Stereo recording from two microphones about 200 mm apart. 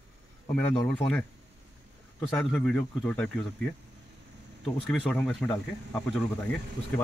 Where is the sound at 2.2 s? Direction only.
5° left (ahead or behind).